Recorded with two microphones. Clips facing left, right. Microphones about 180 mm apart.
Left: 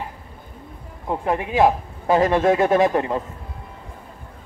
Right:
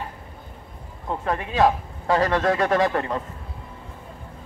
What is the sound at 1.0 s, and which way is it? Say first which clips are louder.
Speech: left 3 dB; 15° left (ahead or behind).